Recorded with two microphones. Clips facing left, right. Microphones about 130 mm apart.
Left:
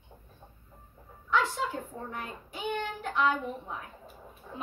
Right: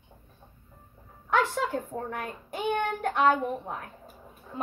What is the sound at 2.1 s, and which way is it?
A child's voice, 55° right (ahead or behind).